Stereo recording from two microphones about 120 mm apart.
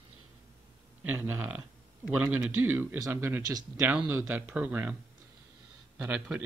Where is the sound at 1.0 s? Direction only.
15° right (ahead or behind).